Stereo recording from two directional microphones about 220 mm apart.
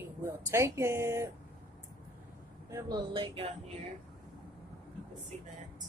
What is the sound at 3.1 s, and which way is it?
Speech, 25° right (ahead or behind).